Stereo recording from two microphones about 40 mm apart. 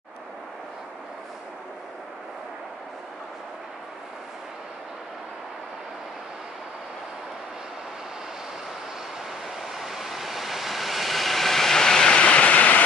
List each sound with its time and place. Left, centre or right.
9.6 s vehicle: centre
12.1 s train: left